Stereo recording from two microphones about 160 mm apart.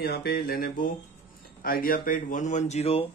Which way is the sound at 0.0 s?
80° left.